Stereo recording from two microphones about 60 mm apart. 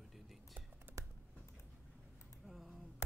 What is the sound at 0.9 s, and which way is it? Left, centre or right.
Computer keyboard, right.